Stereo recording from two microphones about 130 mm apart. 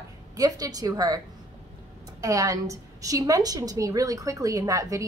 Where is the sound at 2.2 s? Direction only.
25° right (ahead or behind).